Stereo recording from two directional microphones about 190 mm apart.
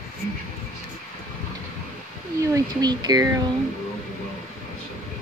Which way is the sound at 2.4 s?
20° right (ahead or behind).